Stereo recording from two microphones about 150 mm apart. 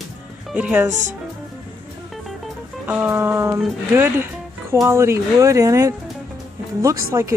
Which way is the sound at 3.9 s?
15° right (ahead or behind).